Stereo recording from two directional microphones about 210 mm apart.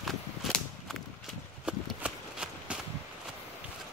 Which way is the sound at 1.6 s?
5° right (ahead or behind).